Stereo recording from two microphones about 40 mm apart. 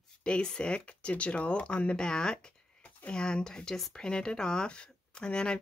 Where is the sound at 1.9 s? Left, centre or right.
Centre.